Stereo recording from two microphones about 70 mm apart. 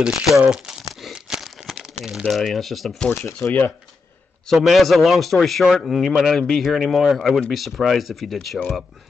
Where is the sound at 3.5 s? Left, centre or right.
Left.